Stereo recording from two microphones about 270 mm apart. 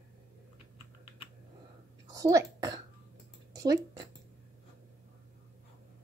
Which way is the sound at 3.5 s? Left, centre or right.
Centre.